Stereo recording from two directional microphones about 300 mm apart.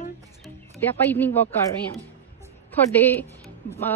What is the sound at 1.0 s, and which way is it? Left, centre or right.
Speech, centre.